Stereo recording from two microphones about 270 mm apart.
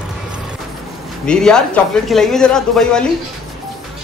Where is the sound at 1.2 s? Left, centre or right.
Centre.